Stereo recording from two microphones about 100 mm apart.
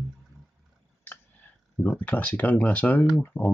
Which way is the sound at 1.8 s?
15° left (ahead or behind).